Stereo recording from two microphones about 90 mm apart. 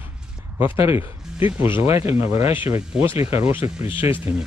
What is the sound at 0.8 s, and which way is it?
Speech, 75° left (ahead or behind).